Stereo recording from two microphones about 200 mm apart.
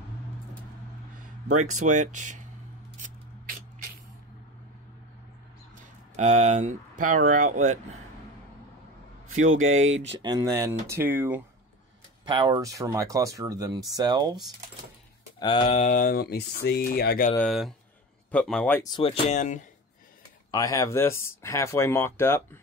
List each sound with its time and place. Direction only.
1.9 s speech: 35° right (ahead or behind)
3.0 s spray: 45° right (ahead or behind)
6.1 s speech: 35° right (ahead or behind)
9.3 s speech: 85° right
10.2 s speech: 20° right (ahead or behind)
12.3 s speech: 20° right (ahead or behind)
15.3 s speech: 25° left (ahead or behind); by 17.3 s 50° left (ahead or behind)
17.4 s speech: centre (ahead or behind)
18.8 s speech: 20° left (ahead or behind); by 19.6 s 35° left (ahead or behind)
20.5 s speech: 15° left (ahead or behind)